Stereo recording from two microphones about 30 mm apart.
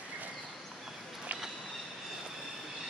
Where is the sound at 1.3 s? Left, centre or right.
Right.